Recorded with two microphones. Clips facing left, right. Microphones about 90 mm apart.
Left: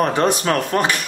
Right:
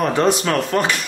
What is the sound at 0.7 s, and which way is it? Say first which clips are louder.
Speech: even; 15° left (ahead or behind).